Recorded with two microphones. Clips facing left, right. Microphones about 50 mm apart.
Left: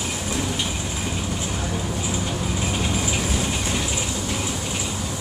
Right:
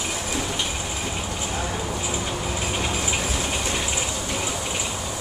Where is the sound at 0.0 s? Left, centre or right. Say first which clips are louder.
Left 1 dB; centre.